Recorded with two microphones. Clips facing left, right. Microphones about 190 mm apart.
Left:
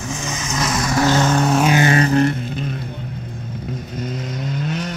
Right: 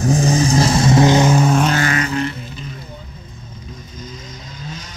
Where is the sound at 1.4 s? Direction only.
Centre (ahead or behind).